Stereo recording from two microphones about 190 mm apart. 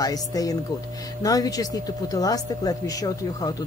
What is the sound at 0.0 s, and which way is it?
Speech, 20° left (ahead or behind).